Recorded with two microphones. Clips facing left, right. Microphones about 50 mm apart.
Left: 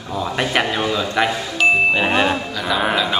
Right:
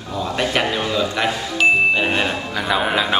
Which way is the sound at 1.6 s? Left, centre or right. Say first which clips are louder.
Even; centre.